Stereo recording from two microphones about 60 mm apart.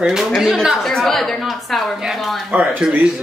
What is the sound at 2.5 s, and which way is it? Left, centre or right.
Speech, right.